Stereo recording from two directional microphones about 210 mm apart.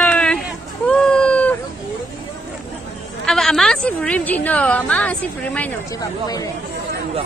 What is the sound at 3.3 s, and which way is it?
A woman's voice, centre (ahead or behind).